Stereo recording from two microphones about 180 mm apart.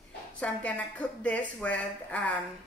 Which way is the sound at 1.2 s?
5° left (ahead or behind).